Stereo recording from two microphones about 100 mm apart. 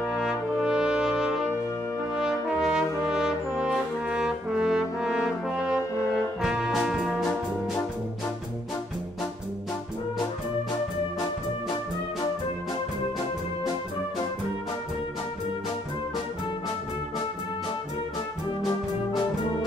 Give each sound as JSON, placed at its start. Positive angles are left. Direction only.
{"t": 0.0, "sound": "brass instrument", "side_deg": -5}